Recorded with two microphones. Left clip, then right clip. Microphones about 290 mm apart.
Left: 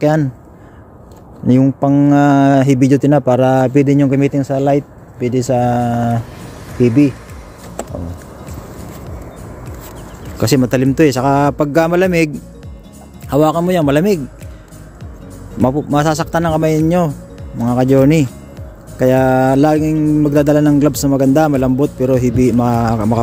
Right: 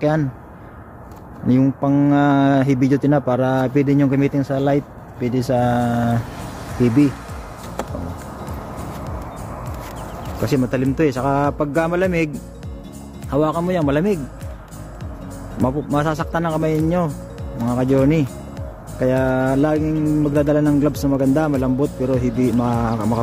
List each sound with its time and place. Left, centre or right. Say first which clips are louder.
0.0 s speech: left 5 dB; left
1.5 s speech: left 5 dB; centre
10.4 s speech: left 6 dB; left
13.3 s speech: left 6 dB; left
15.6 s speech: left 6 dB; left